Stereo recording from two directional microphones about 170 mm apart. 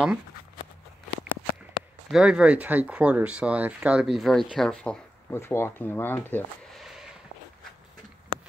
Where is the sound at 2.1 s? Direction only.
5° right (ahead or behind).